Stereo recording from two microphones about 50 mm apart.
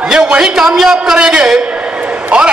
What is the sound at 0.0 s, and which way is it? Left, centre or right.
A man's voice, centre.